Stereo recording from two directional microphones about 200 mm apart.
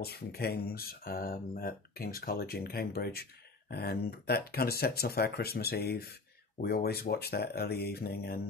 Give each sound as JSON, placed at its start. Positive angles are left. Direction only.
{"t": 0.0, "sound": "speech", "side_deg": 50}